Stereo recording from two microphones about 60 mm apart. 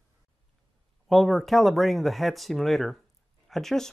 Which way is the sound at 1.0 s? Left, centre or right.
Centre.